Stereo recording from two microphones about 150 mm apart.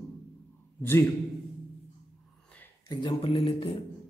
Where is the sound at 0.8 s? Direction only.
15° left (ahead or behind).